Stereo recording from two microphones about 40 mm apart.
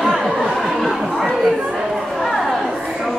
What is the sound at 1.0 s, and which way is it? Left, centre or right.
Chatter, centre.